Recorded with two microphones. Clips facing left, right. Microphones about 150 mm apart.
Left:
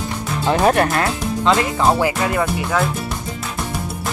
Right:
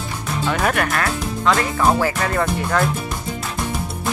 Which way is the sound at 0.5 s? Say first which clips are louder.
Left 6 dB; 30° left (ahead or behind).